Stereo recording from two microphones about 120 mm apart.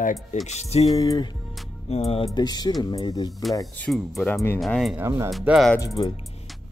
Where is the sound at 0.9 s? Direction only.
30° left (ahead or behind).